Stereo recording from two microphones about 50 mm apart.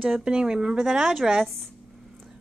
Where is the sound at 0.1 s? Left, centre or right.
Centre.